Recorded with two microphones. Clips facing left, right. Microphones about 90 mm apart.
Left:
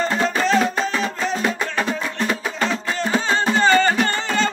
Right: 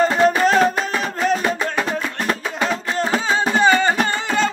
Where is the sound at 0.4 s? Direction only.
45° right (ahead or behind).